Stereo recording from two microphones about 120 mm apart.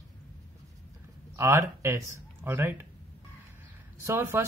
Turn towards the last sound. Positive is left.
turn(degrees=-20)  # may be behind; listen again after turning